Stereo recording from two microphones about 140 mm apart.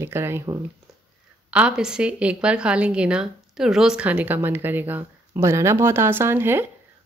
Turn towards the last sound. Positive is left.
turn(degrees=-15)  # may be behind; listen again after turning